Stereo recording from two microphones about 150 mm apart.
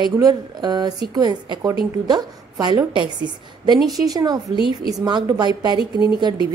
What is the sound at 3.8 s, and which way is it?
Speech, centre (ahead or behind).